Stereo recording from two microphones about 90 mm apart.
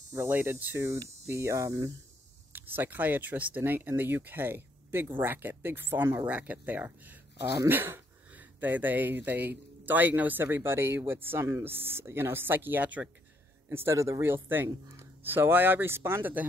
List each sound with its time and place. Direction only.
0.3 s speech: 20° right (ahead or behind)
1.2 s hum: 30° right (ahead or behind)
2.5 s speech: 20° right (ahead or behind)
13.7 s hum: 30° right (ahead or behind)
14.2 s speech: 25° right (ahead or behind)